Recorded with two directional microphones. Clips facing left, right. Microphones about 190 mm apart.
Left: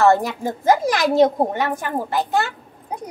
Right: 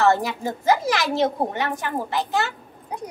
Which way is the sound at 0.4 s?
50° left (ahead or behind).